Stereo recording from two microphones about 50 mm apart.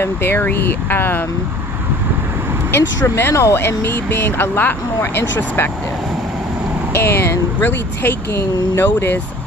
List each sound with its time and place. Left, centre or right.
0.0 s speech: left
2.7 s speech: left
3.3 s speech: left
3.6 s speech: left
6.9 s speech: left
7.6 s speech: left